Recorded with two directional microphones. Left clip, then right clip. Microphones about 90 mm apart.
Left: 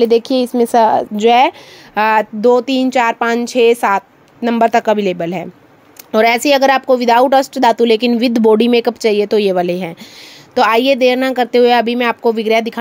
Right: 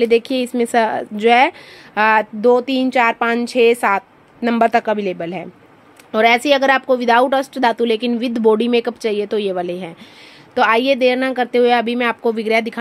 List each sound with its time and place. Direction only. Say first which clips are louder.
0.0 s a woman's voice: left 3 dB; 30° left (ahead or behind); by 4.7 s 15° left (ahead or behind)
4.7 s a woman's voice: left 4 dB; 40° left (ahead or behind); by 9.9 s 60° left (ahead or behind)
10.5 s speech: left 3 dB; 40° left (ahead or behind)